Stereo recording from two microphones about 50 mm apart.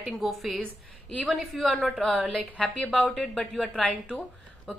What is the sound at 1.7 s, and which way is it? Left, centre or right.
A woman's voice, centre.